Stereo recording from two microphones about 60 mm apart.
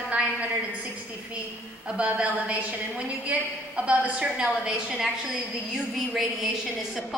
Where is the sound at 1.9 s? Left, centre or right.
Centre.